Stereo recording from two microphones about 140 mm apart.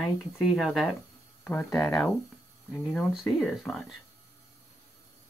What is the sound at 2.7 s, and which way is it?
Speech, 5° left (ahead or behind).